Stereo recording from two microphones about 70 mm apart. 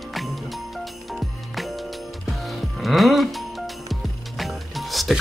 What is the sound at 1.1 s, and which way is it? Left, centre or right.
Music, centre.